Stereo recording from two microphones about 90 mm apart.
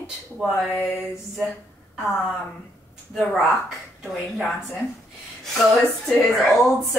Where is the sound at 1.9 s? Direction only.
Centre (ahead or behind).